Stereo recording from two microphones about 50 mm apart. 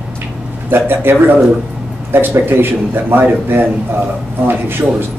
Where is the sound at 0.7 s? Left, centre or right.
Right.